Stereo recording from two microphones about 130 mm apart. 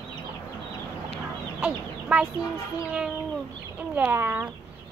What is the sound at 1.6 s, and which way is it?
Speech, 10° right (ahead or behind).